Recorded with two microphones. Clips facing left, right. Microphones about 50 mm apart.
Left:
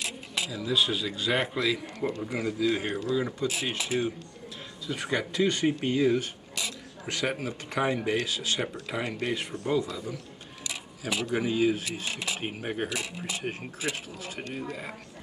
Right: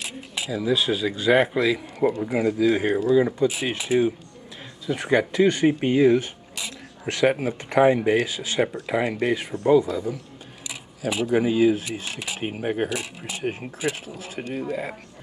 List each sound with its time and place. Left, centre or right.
0.0 s speech: centre
6.1 s a sound: centre
7.2 s speech: right
11.5 s speech: centre